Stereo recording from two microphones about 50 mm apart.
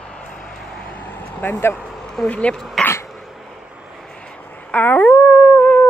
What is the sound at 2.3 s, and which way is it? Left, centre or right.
Speech, left.